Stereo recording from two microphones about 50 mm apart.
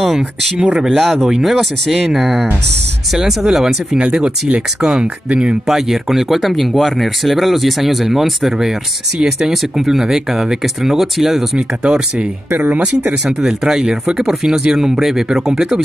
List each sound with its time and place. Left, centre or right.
0.7 s speech: centre
4.0 s speech: centre
5.7 s speech: centre
13.4 s speech: centre